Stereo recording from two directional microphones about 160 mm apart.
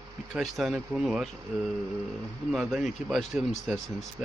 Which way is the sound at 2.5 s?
5° right (ahead or behind).